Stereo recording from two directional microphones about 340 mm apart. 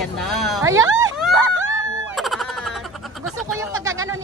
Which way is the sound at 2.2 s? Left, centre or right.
Centre.